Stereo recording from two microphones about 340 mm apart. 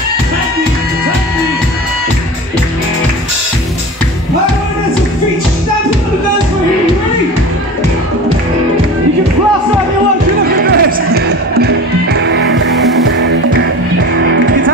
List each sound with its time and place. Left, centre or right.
10.5 s music: right